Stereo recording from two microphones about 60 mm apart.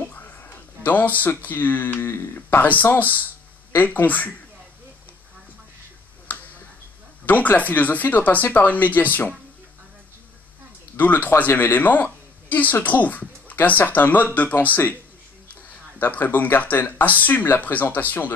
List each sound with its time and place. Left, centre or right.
0.1 s a sound: left
1.2 s speech: left
7.2 s speech: left
11.0 s speech: left
16.0 s speech: left